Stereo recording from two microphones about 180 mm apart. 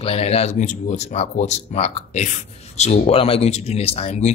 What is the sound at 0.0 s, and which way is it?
A man's voice, 35° left (ahead or behind).